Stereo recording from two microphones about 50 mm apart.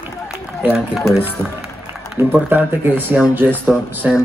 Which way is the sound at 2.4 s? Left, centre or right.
Right.